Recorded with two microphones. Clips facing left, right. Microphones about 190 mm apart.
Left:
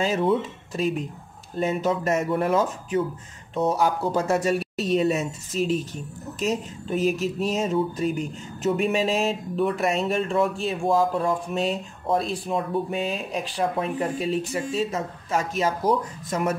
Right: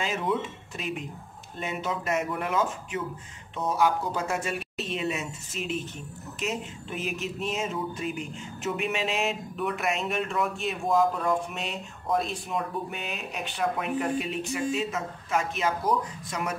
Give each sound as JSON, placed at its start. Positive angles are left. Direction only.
{"t": 0.0, "sound": "speech", "side_deg": 35}